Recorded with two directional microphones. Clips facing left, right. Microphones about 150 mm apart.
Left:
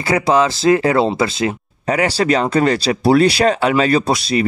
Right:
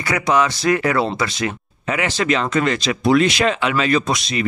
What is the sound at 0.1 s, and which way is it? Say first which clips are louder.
Speech: left 4 dB; 30° left (ahead or behind).